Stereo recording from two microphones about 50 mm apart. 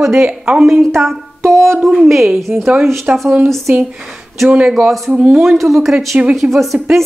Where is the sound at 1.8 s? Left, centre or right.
Centre.